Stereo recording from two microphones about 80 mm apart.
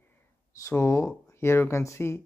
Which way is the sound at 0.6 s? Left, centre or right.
Left.